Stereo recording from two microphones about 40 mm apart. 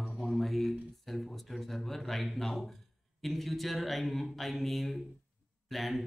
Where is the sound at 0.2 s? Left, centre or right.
Centre.